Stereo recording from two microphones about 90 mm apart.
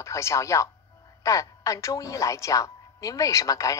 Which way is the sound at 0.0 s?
35° left (ahead or behind).